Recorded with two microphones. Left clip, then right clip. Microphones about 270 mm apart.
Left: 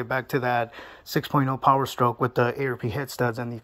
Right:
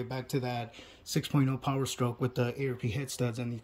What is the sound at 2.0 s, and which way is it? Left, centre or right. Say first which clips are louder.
Speech: left 12 dB; left.